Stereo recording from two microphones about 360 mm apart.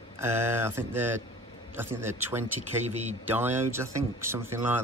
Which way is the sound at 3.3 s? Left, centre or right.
Centre.